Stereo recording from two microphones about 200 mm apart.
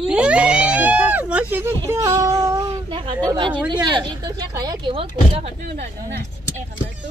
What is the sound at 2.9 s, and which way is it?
Speech, 25° right (ahead or behind).